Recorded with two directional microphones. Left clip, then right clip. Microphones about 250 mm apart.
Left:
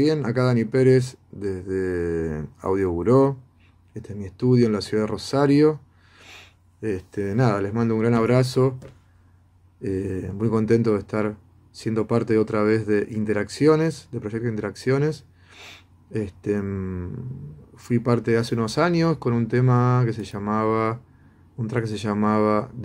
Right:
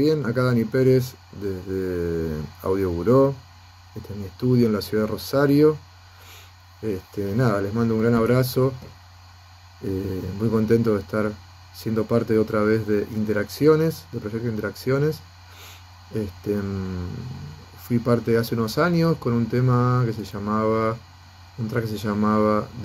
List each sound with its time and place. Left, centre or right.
0.0 s speech: centre
4.4 s speech: centre
10.4 s speech: centre
17.8 s speech: centre